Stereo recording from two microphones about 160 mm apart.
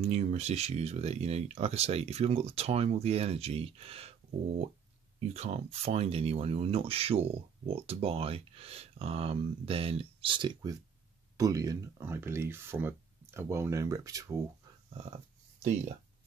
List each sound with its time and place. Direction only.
0.0 s speech: 40° right (ahead or behind)
5.3 s speech: 40° right (ahead or behind); by 14.4 s 20° right (ahead or behind)